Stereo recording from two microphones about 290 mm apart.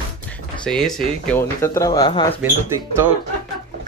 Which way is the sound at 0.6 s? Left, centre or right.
Centre.